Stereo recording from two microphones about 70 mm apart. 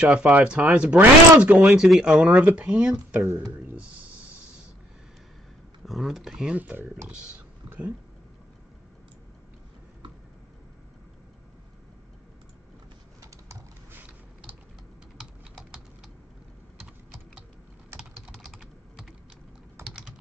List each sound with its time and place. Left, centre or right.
0.0 s speech: centre
1.8 s speech: centre
5.9 s speech: centre
6.5 s speech: right
18.3 s typing: centre